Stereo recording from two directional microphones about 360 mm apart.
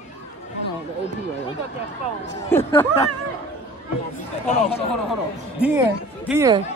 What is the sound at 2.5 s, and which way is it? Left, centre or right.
Speech, centre.